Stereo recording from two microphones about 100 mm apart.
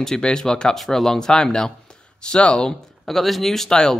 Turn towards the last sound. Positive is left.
turn(degrees=5)  # may be behind; listen again after turning